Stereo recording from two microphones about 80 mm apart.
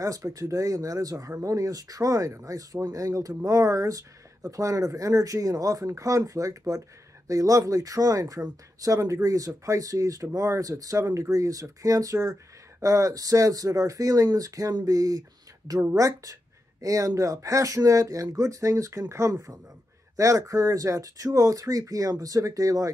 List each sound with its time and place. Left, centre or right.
0.0 s speech: right